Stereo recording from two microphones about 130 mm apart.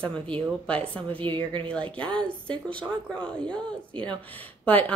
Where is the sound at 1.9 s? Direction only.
10° left (ahead or behind).